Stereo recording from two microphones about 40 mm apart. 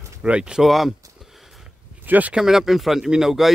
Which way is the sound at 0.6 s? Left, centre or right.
Centre.